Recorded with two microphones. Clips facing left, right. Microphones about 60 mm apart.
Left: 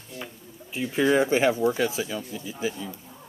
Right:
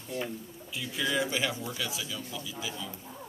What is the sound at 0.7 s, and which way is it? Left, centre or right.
Speech, left.